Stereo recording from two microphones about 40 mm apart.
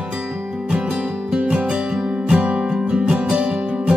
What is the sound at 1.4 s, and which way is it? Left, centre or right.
Music, right.